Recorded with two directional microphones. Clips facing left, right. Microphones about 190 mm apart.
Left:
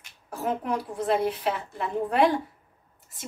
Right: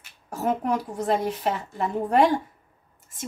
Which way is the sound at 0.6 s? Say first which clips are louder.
Right 2 dB; 45° right (ahead or behind).